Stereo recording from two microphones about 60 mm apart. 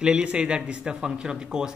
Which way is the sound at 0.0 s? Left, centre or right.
Centre.